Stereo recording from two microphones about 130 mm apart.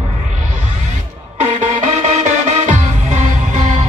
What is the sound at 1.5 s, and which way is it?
Music, 65° right (ahead or behind).